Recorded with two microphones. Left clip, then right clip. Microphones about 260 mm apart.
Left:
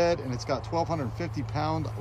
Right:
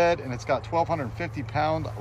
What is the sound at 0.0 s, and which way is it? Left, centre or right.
Speech, centre.